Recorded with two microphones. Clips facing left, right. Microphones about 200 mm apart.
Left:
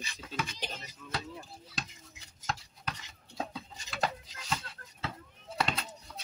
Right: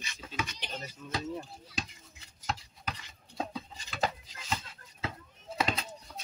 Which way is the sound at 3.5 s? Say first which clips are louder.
Right 2 dB; 5° right (ahead or behind).